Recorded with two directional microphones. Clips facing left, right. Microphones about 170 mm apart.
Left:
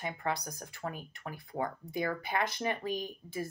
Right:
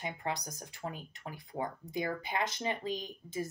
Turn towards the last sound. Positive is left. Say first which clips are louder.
# left 1 dB
turn(degrees=-20)  # may be behind; listen again after turning